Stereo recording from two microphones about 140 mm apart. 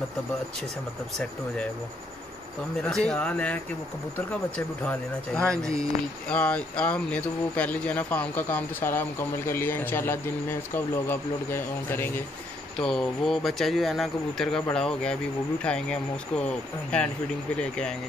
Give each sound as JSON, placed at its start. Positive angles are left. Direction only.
{"t": 2.8, "sound": "speech", "side_deg": 5}
{"t": 4.6, "sound": "speech", "side_deg": 10}
{"t": 12.7, "sound": "speech", "side_deg": 5}